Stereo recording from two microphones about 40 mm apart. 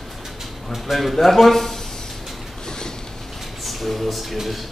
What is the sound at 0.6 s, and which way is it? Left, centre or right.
A man's voice, centre.